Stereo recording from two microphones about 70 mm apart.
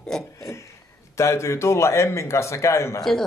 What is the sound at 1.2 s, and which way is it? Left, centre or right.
Speech, left.